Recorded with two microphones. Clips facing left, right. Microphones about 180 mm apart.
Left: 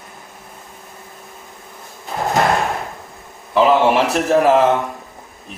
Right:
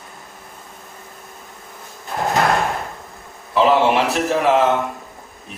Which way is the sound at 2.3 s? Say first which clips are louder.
Left 1 dB; centre (ahead or behind).